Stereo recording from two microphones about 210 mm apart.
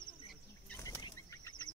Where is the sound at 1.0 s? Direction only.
15° left (ahead or behind).